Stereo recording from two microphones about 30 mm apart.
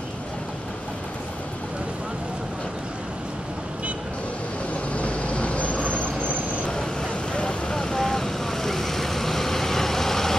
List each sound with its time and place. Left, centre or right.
4.9 s vehicle: left
8.0 s vehicle: centre